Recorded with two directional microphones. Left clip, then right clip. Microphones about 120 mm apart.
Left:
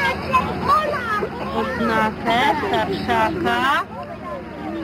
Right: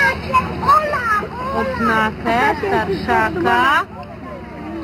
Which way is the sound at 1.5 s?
Centre (ahead or behind).